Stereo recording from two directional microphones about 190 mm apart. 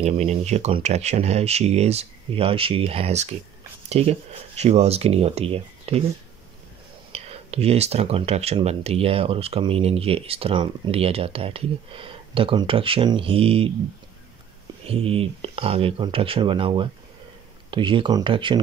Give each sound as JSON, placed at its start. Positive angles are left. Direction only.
{"t": 0.0, "sound": "speech", "side_deg": -35}
{"t": 7.1, "sound": "speech", "side_deg": -30}
{"t": 14.9, "sound": "speech", "side_deg": -30}